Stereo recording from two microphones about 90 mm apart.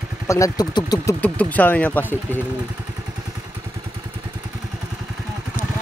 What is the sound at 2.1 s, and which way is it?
Speech, 20° right (ahead or behind).